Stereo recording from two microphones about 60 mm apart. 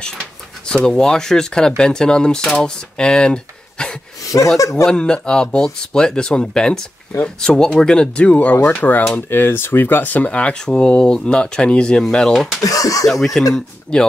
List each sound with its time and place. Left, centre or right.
0.8 s speech: centre
4.6 s speech: left
4.8 s speech: centre
8.3 s speech: left
9.3 s speech: left; by 12.5 s centre
12.6 s speech: left
13.0 s speech: centre
13.9 s speech: centre